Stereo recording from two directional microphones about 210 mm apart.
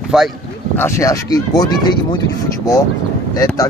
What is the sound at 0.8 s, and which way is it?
Speech, 15° left (ahead or behind).